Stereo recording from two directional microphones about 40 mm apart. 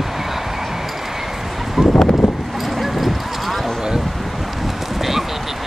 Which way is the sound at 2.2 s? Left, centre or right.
Centre.